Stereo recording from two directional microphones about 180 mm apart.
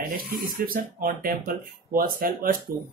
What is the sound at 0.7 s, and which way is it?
Speech, 50° right (ahead or behind).